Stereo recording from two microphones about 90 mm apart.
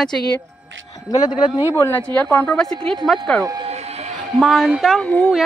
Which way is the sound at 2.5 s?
5° left (ahead or behind).